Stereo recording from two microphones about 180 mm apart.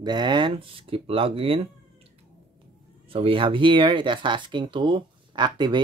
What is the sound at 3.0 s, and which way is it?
Speech, 30° right (ahead or behind).